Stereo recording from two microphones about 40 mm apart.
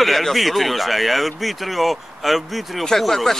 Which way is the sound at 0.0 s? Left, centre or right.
Centre.